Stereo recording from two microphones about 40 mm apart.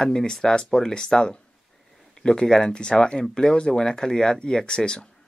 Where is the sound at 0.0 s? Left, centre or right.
Centre.